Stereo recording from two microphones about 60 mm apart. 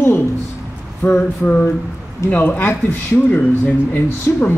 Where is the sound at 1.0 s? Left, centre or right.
Left.